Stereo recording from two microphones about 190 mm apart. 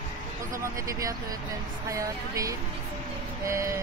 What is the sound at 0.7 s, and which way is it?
Speech, 15° right (ahead or behind).